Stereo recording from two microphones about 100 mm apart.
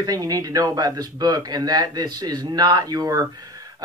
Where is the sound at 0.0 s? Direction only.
40° right (ahead or behind).